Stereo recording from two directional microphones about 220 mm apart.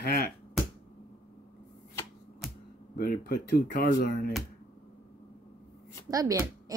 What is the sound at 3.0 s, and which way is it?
Speech, 40° left (ahead or behind).